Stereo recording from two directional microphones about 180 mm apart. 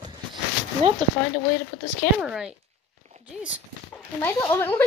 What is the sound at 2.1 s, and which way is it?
Speech, 5° right (ahead or behind).